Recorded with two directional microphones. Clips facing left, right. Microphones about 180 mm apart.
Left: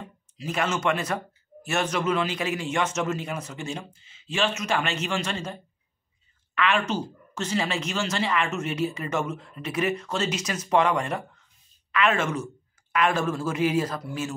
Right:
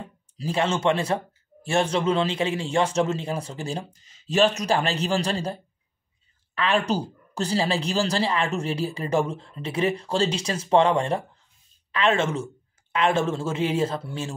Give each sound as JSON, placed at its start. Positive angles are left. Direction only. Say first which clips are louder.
{"t": 0.4, "sound": "speech", "louder": "right 3 dB", "side_deg": -30}